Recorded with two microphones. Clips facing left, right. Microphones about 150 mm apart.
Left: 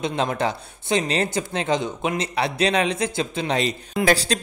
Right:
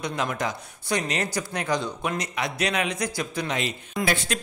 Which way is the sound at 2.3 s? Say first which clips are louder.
Left 8 dB; 30° left (ahead or behind).